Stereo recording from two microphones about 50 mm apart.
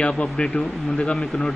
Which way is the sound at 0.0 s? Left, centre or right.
Left.